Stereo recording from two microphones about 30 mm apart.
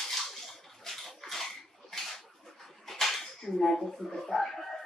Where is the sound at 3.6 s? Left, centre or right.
Centre.